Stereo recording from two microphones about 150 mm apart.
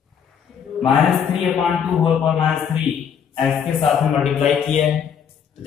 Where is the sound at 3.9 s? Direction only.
Centre (ahead or behind).